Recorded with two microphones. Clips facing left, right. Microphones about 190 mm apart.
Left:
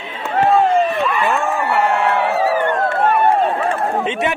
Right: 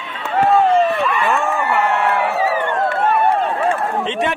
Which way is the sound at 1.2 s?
Centre (ahead or behind).